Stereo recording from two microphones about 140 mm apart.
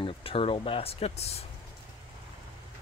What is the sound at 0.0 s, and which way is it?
Speech, 40° left (ahead or behind).